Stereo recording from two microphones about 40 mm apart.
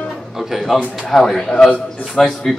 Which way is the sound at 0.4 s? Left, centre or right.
Centre.